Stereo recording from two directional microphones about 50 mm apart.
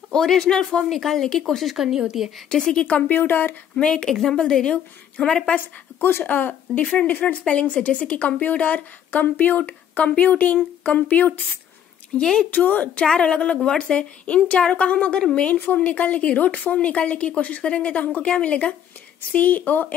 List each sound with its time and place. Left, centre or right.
0.1 s a woman's voice: centre
2.5 s speech: centre
2.9 s speech: left
3.2 s speech: left
3.7 s speech: centre
5.9 s speech: left
7.4 s a woman's voice: left
12.2 s speech: centre
12.4 s speech: left
13.0 s speech: centre
14.2 s a woman's voice: left